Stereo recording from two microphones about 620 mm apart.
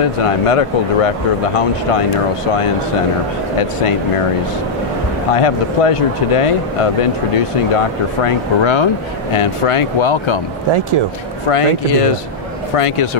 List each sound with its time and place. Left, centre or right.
0.5 s speech: left
5.3 s speech: left
11.4 s speech: left